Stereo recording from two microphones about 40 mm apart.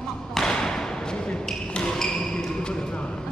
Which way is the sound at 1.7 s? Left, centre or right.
Left.